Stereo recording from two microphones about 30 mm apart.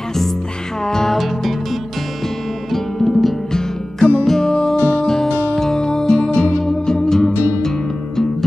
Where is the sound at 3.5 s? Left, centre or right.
Centre.